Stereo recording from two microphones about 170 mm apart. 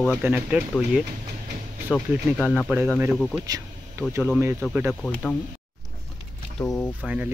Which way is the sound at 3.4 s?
20° right (ahead or behind).